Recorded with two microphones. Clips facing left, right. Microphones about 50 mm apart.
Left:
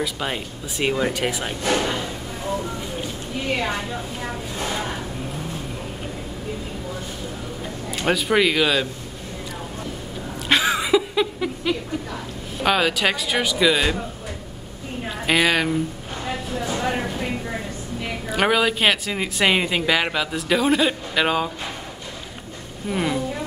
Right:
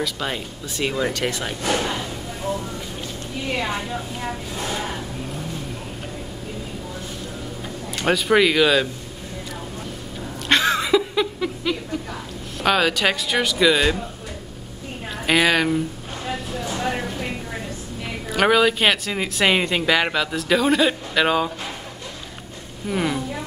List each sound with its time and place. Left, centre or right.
0.0 s speech: centre
1.6 s speech: left
7.9 s speech: centre
10.5 s a sound: centre
12.5 s speech: centre
15.2 s speech: centre
16.3 s vehicle: centre
18.3 s speech: centre
22.8 s speech: centre